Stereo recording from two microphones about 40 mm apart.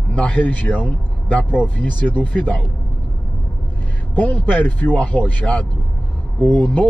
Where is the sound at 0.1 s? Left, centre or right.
Left.